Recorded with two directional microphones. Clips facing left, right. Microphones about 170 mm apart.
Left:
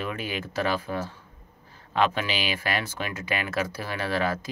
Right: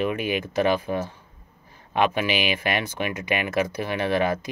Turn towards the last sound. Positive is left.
turn(degrees=-20)  # may be behind; listen again after turning